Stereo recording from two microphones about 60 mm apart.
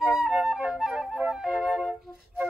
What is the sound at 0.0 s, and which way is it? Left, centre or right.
Flute, centre.